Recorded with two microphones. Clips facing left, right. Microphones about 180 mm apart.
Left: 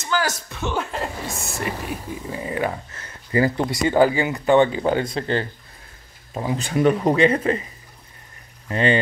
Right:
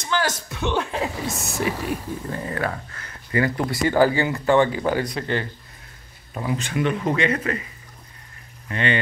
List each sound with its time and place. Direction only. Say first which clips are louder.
0.0 s a sound: even; 5° left (ahead or behind)
0.5 s speech: right 2 dB; centre (ahead or behind); by 7.6 s 30° left (ahead or behind)
8.6 s speech: left 4 dB; 35° left (ahead or behind)